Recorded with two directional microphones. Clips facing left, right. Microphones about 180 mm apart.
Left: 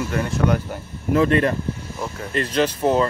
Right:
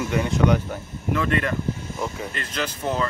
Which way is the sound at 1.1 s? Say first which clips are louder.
Left 6 dB; 35° left (ahead or behind).